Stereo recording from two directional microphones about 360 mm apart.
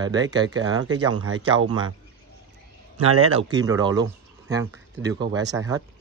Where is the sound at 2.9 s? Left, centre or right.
Right.